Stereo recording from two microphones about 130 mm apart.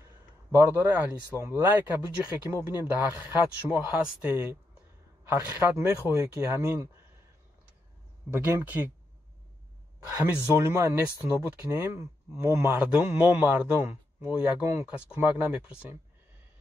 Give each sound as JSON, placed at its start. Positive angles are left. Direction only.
{"t": 0.6, "sound": "speech", "side_deg": -15}
{"t": 8.3, "sound": "speech", "side_deg": -15}
{"t": 10.5, "sound": "speech", "side_deg": -20}